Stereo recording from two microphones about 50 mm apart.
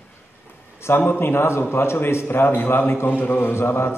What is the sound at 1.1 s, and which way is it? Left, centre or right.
A man's voice, left.